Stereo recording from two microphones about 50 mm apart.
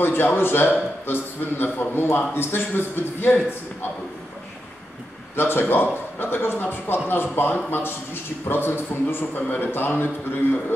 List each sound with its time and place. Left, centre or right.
0.0 s a man's voice: left
5.3 s a man's voice: left